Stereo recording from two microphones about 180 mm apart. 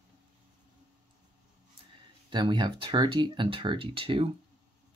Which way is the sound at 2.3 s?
25° right (ahead or behind).